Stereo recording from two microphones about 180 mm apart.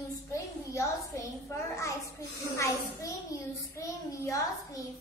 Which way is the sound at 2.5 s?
15° left (ahead or behind).